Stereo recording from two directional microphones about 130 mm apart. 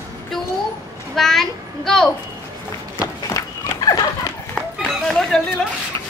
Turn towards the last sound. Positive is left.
turn(degrees=5)  # may be behind; listen again after turning